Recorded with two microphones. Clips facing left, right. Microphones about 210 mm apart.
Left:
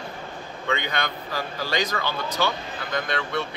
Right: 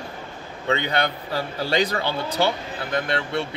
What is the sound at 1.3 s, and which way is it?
Speech, 30° right (ahead or behind).